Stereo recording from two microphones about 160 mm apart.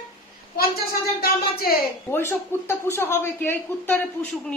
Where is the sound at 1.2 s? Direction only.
70° left (ahead or behind).